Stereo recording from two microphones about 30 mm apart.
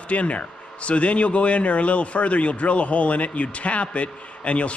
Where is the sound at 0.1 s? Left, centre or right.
Left.